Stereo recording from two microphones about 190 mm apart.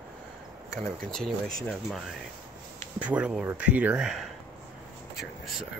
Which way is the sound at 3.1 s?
5° right (ahead or behind).